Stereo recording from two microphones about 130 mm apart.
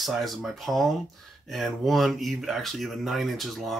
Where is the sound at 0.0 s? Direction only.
Centre (ahead or behind).